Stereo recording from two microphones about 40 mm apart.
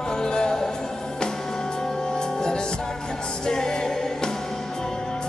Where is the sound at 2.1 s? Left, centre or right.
Centre.